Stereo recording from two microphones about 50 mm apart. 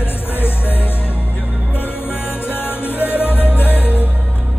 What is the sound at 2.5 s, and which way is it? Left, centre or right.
Music, left.